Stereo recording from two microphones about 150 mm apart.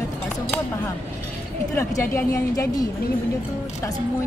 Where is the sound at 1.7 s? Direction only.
20° left (ahead or behind).